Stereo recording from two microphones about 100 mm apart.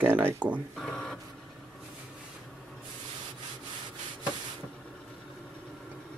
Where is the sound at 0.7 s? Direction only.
5° left (ahead or behind).